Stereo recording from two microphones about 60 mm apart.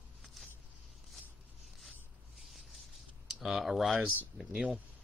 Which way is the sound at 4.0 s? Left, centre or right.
Right.